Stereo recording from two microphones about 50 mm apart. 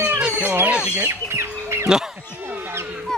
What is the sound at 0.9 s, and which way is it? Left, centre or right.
Chicken, right.